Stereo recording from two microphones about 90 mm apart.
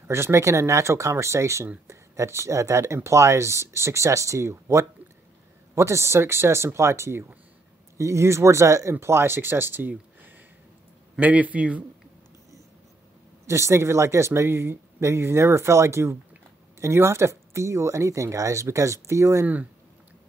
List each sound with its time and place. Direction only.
0.1 s speech: 30° right (ahead or behind)
13.5 s speech: 30° right (ahead or behind)